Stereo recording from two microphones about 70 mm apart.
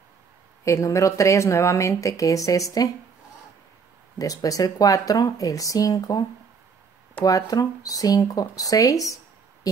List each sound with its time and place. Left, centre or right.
0.7 s speech: left
4.2 s speech: left
7.2 s speech: left